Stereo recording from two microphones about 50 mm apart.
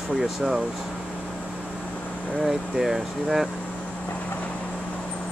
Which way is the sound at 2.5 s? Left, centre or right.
Centre.